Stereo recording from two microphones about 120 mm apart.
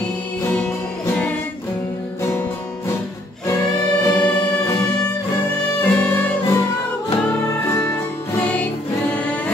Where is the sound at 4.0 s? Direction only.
15° left (ahead or behind).